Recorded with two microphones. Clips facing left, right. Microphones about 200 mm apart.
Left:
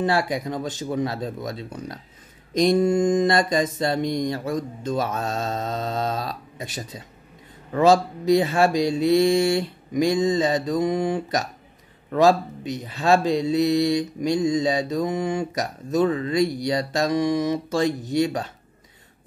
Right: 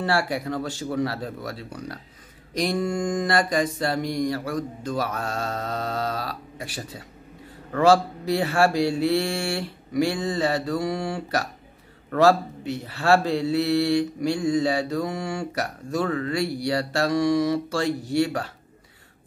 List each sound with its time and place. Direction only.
0.0 s speech: 20° left (ahead or behind)